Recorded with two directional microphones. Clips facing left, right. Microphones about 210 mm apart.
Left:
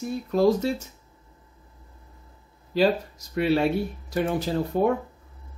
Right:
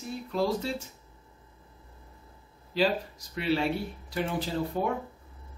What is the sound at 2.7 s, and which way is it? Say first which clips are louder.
Speech: left 5 dB; 45° left (ahead or behind).